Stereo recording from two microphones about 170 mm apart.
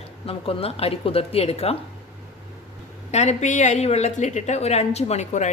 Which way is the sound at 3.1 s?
45° left (ahead or behind).